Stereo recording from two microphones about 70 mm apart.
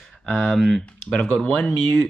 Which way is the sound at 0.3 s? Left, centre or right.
Centre.